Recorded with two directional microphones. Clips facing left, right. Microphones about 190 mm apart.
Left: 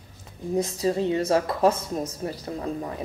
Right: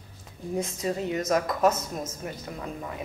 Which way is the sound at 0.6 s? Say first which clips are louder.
Left 5 dB; 35° left (ahead or behind).